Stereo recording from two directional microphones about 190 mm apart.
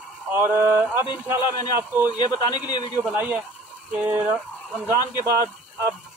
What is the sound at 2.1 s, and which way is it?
Speech, 20° left (ahead or behind).